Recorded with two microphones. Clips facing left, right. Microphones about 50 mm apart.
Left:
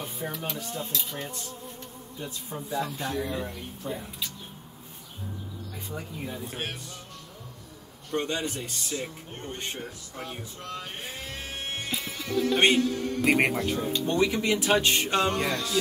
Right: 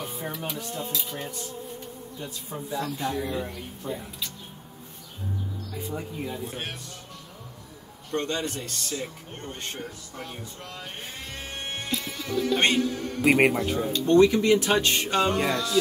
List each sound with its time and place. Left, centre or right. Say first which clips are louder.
0.0 s speech: right 1 dB; centre
5.8 s speech: right 4 dB; centre
8.1 s speech: right 1 dB; centre
11.3 s music: right 2 dB; centre
11.9 s speech: right 1 dB; centre
13.9 s speech: right 9 dB; centre